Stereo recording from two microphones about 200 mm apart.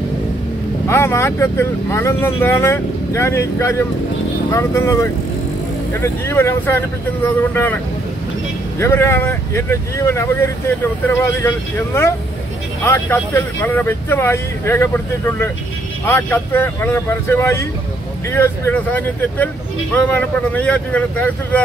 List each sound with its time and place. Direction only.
0.8 s speech: 10° left (ahead or behind)